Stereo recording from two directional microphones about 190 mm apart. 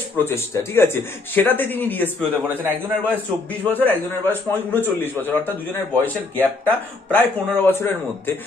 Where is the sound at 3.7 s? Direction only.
10° left (ahead or behind).